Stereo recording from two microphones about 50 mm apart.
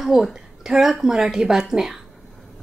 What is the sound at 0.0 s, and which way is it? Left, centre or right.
A woman's voice, centre.